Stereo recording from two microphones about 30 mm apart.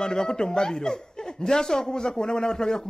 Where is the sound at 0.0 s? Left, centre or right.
Left.